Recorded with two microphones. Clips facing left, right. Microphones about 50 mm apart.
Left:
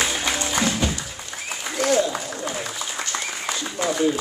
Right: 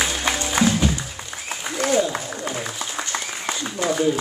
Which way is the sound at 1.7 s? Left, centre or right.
Centre.